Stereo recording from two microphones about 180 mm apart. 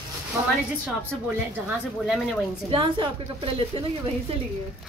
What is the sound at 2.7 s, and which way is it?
Speech, 30° right (ahead or behind).